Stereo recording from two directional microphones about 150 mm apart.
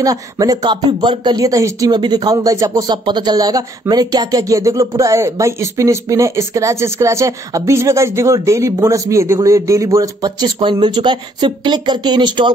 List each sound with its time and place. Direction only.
0.0 s speech: 25° right (ahead or behind)